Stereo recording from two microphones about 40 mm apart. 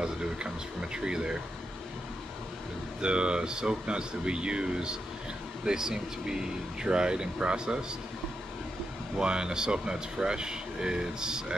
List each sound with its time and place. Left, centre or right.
0.0 s speech: right
3.0 s speech: right
9.2 s speech: right